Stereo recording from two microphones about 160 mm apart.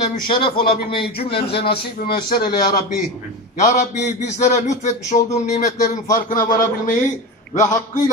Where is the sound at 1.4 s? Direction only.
90° left.